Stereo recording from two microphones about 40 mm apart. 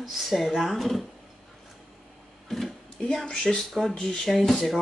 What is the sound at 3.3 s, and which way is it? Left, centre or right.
Speech, centre.